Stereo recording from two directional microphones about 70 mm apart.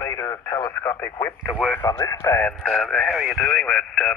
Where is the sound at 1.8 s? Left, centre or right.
Left.